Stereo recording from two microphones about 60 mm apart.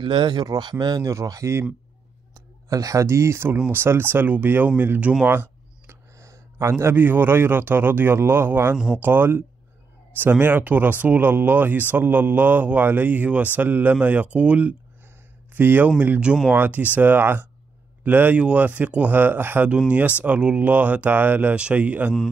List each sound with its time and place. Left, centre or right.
0.5 s speech: right
1.1 s speech: right
2.7 s speech: right
5.2 s a sound: right
6.1 s speech: right
8.7 s speech: centre
9.0 s speech: right
15.5 s speech: right
19.9 s speech: right
21.5 s speech: right